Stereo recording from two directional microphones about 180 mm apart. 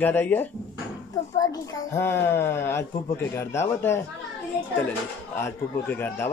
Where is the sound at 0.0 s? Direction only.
10° left (ahead or behind).